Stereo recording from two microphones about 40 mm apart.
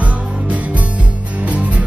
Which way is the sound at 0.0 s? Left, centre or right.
Right.